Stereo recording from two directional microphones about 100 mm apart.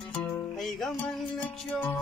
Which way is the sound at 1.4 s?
15° left (ahead or behind).